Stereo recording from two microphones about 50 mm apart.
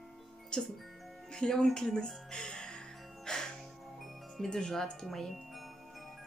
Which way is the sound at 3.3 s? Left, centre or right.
Centre.